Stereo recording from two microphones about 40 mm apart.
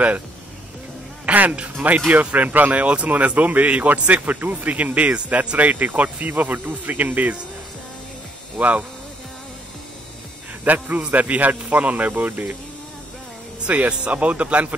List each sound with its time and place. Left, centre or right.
1.2 s a man's voice: right
8.5 s speech: right
10.6 s speech: right
13.7 s speech: right